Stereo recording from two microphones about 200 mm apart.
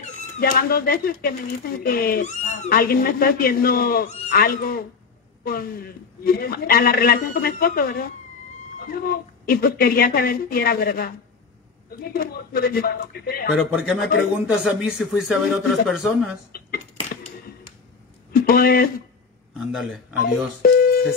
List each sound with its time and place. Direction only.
0.4 s speech: 50° left (ahead or behind)
13.6 s speech: 5° right (ahead or behind)
16.5 s dishes: 45° left (ahead or behind)
18.3 s speech: 50° left (ahead or behind)
19.7 s speech: centre (ahead or behind)
20.6 s speech: 45° left (ahead or behind)